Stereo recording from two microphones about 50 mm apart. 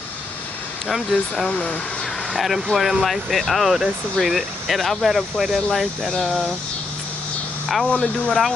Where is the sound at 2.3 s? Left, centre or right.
Centre.